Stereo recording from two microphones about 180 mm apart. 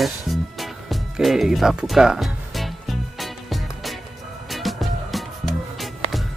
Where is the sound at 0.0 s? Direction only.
Centre (ahead or behind).